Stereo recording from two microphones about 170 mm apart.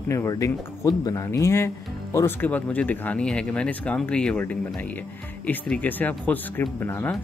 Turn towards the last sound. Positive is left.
turn(degrees=15)  # may be behind; listen again after turning